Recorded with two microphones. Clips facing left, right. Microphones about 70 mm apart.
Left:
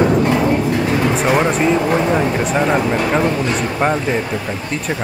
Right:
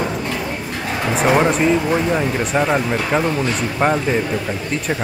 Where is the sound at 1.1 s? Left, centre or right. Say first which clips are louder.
Even; centre.